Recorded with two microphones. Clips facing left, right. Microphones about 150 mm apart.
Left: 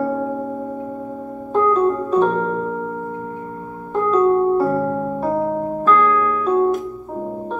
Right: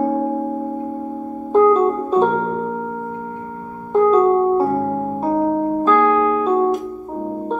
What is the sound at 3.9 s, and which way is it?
Keyboard, 25° right (ahead or behind).